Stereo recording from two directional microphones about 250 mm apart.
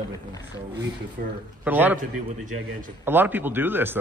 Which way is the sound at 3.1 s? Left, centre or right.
Centre.